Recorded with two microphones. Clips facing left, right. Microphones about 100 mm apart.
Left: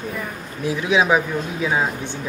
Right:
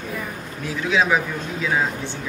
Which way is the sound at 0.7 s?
15° left (ahead or behind).